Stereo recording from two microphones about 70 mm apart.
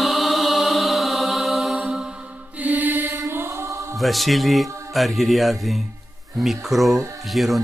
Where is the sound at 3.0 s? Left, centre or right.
Right.